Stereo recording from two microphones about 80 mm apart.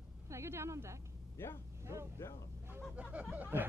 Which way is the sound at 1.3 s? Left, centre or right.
Left.